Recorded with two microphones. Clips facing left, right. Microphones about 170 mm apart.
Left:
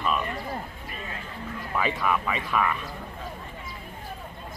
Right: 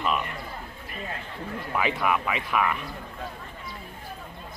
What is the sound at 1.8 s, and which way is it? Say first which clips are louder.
Speech: right 1 dB; 10° right (ahead or behind).